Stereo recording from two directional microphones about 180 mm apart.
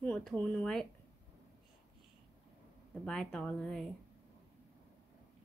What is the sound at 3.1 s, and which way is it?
Speech, 5° left (ahead or behind).